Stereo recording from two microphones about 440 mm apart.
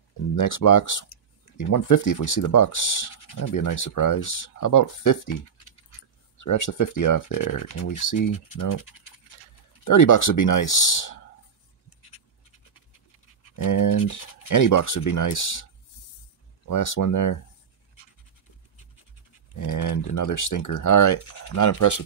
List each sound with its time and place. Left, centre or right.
0.4 s speech: left
6.3 s speech: left
9.8 s speech: left
13.6 s speech: left
16.6 s speech: left
19.5 s speech: left